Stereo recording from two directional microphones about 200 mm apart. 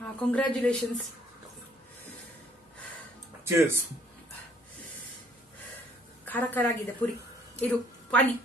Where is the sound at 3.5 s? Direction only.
10° right (ahead or behind).